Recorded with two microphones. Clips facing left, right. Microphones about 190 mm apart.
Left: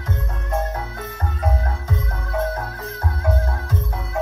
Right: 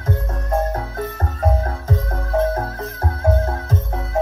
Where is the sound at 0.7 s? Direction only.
45° right (ahead or behind).